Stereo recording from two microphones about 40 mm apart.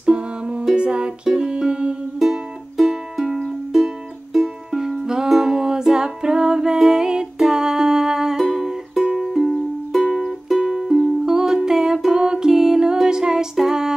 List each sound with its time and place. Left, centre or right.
0.0 s music: right
2.8 s music: centre